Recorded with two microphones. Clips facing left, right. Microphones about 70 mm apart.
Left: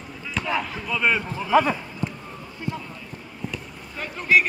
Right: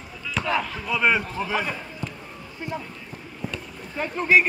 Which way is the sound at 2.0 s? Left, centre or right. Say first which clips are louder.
Left 6 dB; centre.